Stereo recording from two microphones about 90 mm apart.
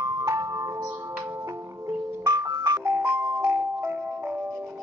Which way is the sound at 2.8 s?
25° right (ahead or behind).